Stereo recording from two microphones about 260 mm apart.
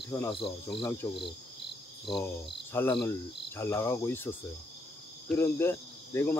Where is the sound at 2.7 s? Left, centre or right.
Centre.